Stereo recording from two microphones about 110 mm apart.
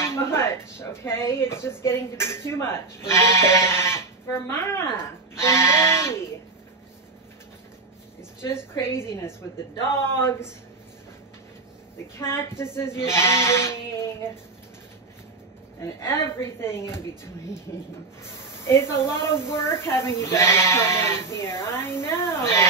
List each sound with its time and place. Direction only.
0.0 s a woman's voice: 25° left (ahead or behind)
8.4 s a woman's voice: 25° left (ahead or behind)
12.2 s a woman's voice: 25° left (ahead or behind)
15.8 s a woman's voice: 25° left (ahead or behind)
18.2 s a woman's voice: 25° left (ahead or behind)